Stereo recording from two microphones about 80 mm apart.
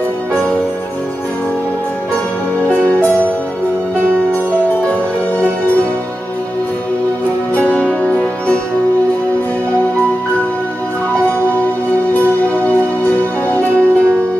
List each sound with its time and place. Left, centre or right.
2.7 s music: left
4.1 s music: centre
7.5 s music: left
12.1 s music: left